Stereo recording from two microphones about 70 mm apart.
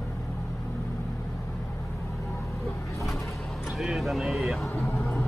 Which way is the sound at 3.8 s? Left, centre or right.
Centre.